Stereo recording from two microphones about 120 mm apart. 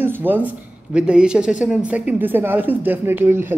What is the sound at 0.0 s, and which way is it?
A man's voice, 15° right (ahead or behind).